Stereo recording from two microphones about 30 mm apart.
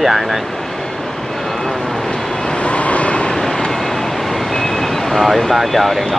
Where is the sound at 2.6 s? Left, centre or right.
Left.